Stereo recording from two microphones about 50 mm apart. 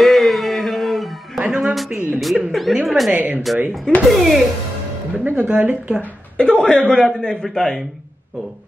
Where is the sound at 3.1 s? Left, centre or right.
Right.